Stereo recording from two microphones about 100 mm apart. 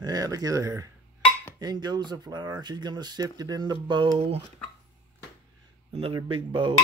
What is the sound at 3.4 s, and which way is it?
Cutlery, 40° right (ahead or behind).